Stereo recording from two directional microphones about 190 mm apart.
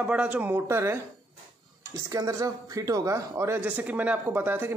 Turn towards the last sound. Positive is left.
turn(degrees=-10)  # may be behind; listen again after turning